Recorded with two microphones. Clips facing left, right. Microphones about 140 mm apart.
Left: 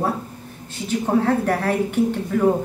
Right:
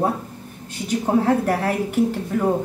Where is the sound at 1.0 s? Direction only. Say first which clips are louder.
Right 1 dB; 10° right (ahead or behind).